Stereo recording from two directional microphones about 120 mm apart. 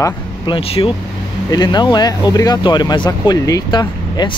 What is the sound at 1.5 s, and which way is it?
Speech, 35° left (ahead or behind).